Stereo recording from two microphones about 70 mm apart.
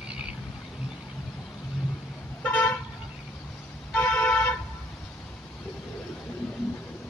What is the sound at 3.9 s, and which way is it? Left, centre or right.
Vehicle, left.